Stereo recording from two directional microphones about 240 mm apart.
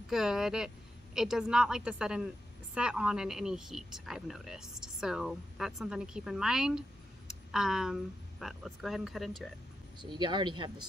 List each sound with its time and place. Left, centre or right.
0.1 s a woman's voice: centre
9.9 s speech: centre